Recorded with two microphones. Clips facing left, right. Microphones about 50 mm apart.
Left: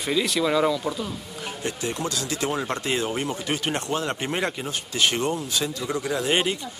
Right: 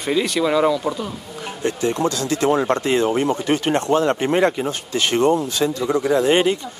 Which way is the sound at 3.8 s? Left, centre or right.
Centre.